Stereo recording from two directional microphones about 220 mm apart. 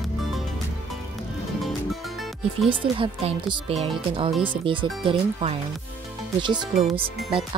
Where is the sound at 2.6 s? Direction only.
25° right (ahead or behind).